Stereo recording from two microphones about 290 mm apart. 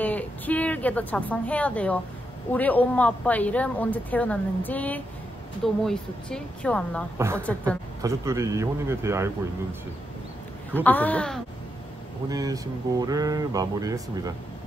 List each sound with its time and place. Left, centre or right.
0.0 s a woman's voice: centre
7.2 s speech: centre
10.7 s a woman's voice: centre
12.3 s speech: centre